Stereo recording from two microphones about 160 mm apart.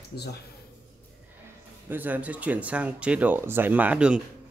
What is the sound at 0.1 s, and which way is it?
Speech, 90° left.